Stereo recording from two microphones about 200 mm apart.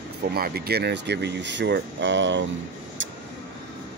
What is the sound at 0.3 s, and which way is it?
Speech, 50° right (ahead or behind).